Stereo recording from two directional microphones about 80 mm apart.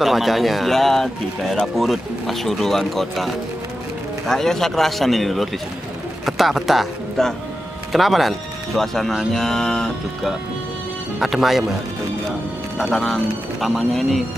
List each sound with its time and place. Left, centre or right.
0.0 s speech: centre